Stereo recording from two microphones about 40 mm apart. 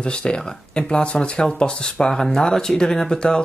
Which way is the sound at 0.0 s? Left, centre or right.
Left.